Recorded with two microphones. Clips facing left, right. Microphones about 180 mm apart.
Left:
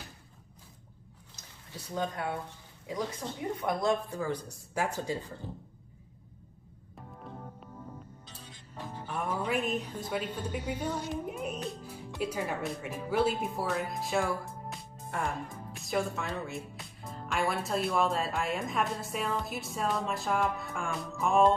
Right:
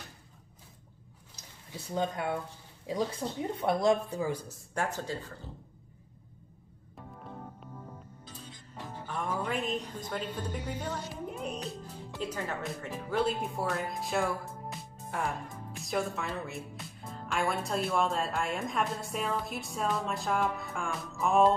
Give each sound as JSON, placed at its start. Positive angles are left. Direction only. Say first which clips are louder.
{"t": 2.0, "sound": "speech", "louder": "right 2 dB", "side_deg": -25}
{"t": 4.2, "sound": "a woman's voice", "louder": "right 1 dB", "side_deg": -10}
{"t": 4.8, "sound": "speech", "louder": "left 3 dB", "side_deg": 15}
{"t": 8.3, "sound": "a woman's voice", "louder": "right 3 dB", "side_deg": 10}